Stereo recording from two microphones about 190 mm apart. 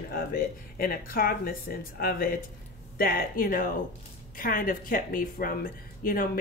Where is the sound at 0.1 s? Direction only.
50° left (ahead or behind).